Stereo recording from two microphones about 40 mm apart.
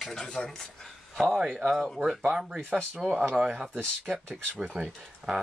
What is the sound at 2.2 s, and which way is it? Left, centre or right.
Speech, centre.